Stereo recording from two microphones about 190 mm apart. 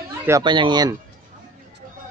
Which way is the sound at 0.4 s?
25° right (ahead or behind).